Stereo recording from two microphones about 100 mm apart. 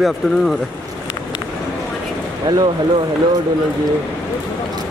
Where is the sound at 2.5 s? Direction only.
40° right (ahead or behind).